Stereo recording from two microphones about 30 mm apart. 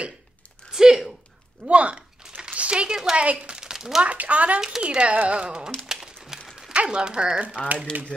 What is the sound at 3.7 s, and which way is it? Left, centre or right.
Speech, centre.